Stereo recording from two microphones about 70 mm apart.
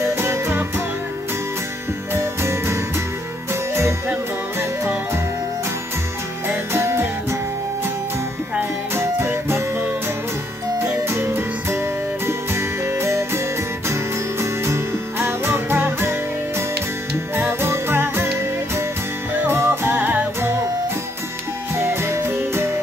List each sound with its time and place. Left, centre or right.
0.0 s music: right
2.1 s music: right
4.1 s music: right
6.4 s music: right
8.5 s music: right
10.8 s music: right
14.4 s music: right
19.4 s music: right
21.7 s music: right